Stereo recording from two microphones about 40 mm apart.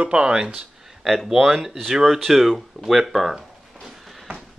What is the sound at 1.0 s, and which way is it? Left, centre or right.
Speech, centre.